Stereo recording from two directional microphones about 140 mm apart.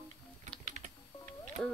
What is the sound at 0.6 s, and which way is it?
Typing, 60° right (ahead or behind).